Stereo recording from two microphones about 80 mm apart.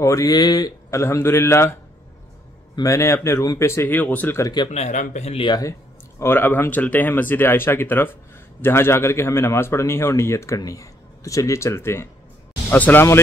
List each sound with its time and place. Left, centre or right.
0.0 s speech: left
2.8 s speech: left
3.9 s speech: left
4.6 s speech: left
5.6 s speech: left
12.6 s speech: centre